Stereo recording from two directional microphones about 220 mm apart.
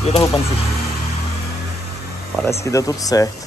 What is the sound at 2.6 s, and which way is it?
Speech, 15° left (ahead or behind).